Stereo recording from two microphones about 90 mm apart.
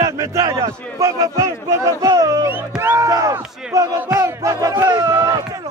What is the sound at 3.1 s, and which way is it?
A man's voice, 40° right (ahead or behind).